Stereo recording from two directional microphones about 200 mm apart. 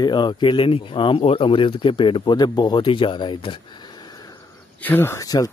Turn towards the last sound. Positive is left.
turn(degrees=20)  # may be behind; listen again after turning